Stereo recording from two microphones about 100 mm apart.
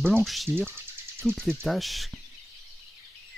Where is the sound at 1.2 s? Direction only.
Centre (ahead or behind).